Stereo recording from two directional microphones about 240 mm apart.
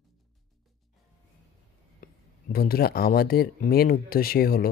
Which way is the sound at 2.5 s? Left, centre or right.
Left.